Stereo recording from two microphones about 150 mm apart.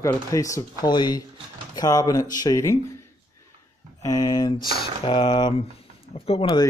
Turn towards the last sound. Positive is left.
turn(degrees=40)  # may be behind; listen again after turning